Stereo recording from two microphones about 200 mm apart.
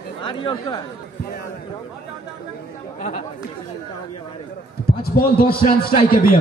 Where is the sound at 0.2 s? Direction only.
25° left (ahead or behind).